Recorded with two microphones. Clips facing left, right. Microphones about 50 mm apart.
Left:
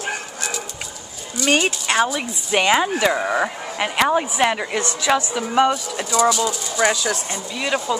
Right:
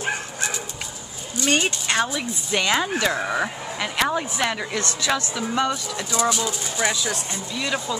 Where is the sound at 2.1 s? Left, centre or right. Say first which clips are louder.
Left 4 dB; left.